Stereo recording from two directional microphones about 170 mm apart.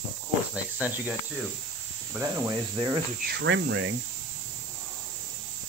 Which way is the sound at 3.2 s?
90° right.